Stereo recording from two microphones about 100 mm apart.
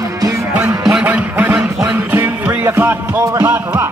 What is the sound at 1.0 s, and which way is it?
Music, 15° right (ahead or behind).